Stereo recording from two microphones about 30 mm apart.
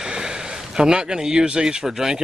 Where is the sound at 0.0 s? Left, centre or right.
Right.